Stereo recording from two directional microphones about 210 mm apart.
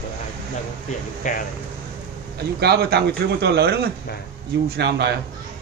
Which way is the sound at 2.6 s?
50° right (ahead or behind).